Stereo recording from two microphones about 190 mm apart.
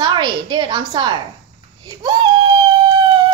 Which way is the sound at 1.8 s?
25° right (ahead or behind).